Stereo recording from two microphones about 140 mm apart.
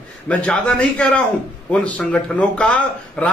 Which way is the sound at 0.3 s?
10° left (ahead or behind).